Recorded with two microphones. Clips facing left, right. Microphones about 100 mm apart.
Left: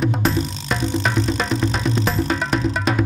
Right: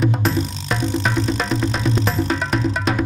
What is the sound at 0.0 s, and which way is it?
Music, centre (ahead or behind).